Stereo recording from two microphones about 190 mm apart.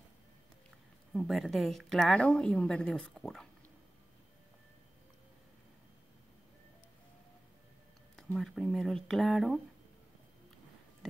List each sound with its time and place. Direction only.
1.1 s a woman's voice: centre (ahead or behind)
8.2 s a woman's voice: centre (ahead or behind)